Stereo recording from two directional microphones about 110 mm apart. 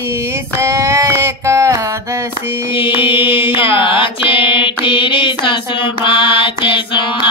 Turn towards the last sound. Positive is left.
turn(degrees=50)  # may be behind; listen again after turning